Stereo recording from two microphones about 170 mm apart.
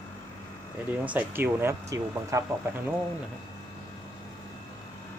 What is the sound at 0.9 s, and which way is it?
Speech, 10° right (ahead or behind).